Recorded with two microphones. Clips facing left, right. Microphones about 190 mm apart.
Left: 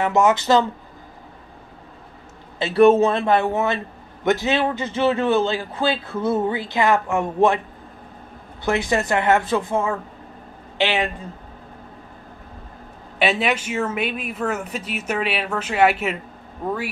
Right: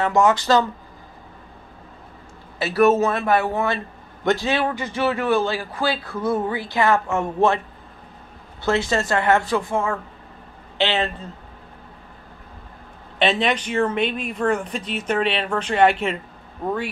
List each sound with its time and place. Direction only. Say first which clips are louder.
0.0 s a man's voice: even; 20° left (ahead or behind)
2.6 s a man's voice: left 3 dB; 30° left (ahead or behind)
8.6 s a man's voice: even; 15° left (ahead or behind)
13.2 s speech: even; 10° left (ahead or behind)